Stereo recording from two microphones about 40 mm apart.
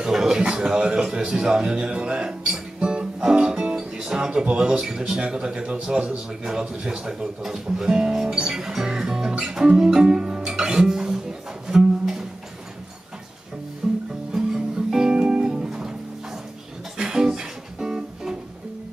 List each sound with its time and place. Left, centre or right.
0.1 s speech: centre
0.4 s a man's voice: right
2.8 s music: right
3.4 s a man's voice: centre
11.6 s music: centre
13.8 s music: centre
15.1 s music: right
16.9 s music: centre